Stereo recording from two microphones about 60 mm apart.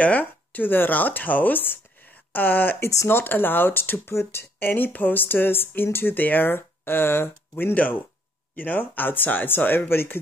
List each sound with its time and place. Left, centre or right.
0.0 s speech: left